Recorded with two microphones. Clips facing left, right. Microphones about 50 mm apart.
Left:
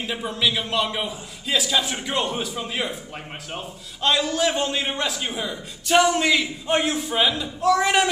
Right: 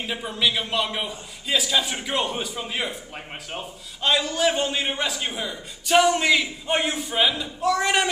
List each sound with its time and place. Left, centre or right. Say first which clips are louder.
0.0 s a man's voice: left 1 dB; centre